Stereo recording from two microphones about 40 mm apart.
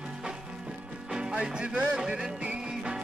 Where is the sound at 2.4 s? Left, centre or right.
Right.